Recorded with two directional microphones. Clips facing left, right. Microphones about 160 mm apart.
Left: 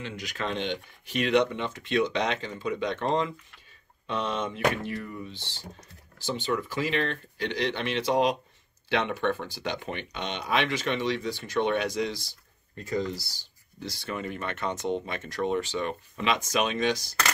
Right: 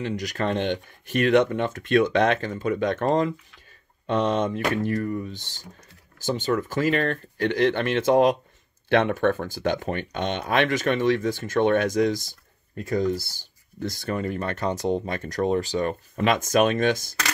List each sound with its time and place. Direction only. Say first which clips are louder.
0.0 s speech: right 7 dB; 40° right (ahead or behind)